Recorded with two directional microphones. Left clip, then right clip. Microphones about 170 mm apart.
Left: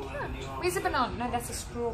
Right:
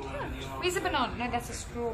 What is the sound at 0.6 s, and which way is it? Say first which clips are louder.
Speech: left 1 dB; centre (ahead or behind).